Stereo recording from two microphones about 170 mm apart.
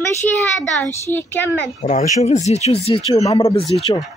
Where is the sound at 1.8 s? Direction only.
45° left (ahead or behind).